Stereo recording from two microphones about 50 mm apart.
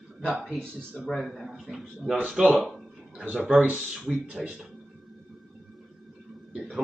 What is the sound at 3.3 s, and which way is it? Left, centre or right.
Speech, centre.